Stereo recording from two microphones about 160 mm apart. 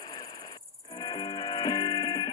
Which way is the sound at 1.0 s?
25° left (ahead or behind).